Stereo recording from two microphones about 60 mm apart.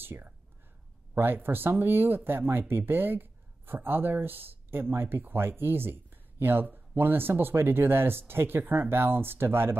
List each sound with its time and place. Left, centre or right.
0.0 s speech: right